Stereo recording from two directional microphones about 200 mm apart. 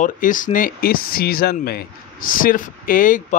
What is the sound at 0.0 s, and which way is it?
Speech, 40° left (ahead or behind).